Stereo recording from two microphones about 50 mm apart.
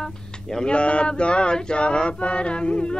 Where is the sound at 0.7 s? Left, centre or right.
Left.